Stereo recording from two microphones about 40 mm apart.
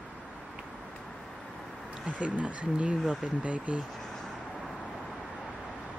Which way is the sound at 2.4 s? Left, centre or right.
Right.